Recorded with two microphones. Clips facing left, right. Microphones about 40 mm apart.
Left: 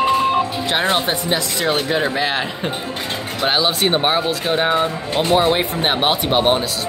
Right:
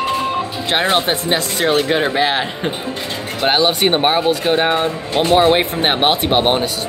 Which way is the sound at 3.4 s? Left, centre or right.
Right.